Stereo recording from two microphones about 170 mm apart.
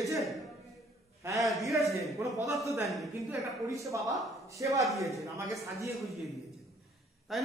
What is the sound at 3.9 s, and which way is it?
A man's voice, 20° right (ahead or behind).